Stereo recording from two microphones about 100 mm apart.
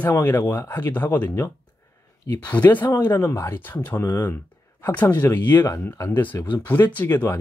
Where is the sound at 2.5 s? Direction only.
20° left (ahead or behind).